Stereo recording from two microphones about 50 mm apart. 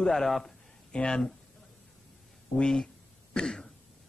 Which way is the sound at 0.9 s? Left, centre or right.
Centre.